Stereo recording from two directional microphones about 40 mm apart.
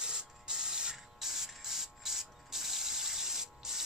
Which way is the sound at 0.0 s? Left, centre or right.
Right.